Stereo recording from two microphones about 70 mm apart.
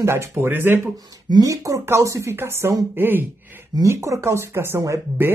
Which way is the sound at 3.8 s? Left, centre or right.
Right.